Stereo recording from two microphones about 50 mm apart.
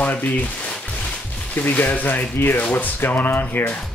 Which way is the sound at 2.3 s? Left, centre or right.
Left.